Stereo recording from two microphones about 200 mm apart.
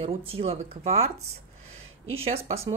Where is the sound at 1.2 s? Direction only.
90° right.